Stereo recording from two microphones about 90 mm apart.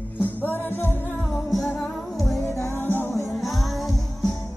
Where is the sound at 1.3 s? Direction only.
5° left (ahead or behind).